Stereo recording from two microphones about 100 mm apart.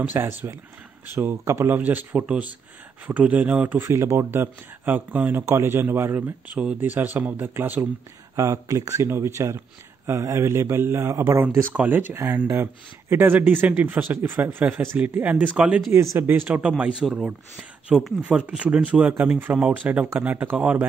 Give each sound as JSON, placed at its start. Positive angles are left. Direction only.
{"t": 0.0, "sound": "speech", "side_deg": -20}
{"t": 1.8, "sound": "speech", "side_deg": -15}
{"t": 8.4, "sound": "speech", "side_deg": -35}
{"t": 11.4, "sound": "speech", "side_deg": -15}
{"t": 15.9, "sound": "speech", "side_deg": -25}